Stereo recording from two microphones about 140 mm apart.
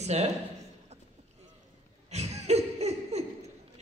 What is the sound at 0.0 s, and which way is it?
Speech, 50° right (ahead or behind).